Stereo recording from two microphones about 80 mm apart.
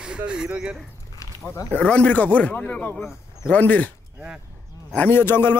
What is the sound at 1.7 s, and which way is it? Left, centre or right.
A man's voice, centre.